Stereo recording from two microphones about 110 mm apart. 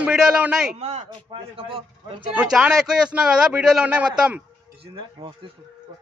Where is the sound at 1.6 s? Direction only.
55° right (ahead or behind).